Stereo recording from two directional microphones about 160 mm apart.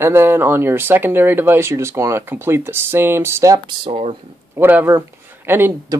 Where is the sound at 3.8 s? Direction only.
35° right (ahead or behind).